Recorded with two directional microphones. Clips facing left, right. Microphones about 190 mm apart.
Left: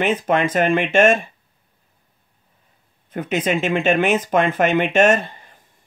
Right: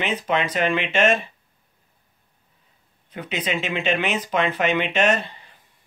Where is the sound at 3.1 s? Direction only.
50° left (ahead or behind).